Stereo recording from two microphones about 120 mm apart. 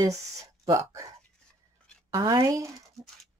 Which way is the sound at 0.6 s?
25° right (ahead or behind).